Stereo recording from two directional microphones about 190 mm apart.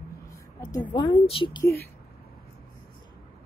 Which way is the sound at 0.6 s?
20° left (ahead or behind).